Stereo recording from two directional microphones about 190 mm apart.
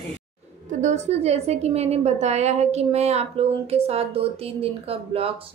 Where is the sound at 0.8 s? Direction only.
35° right (ahead or behind).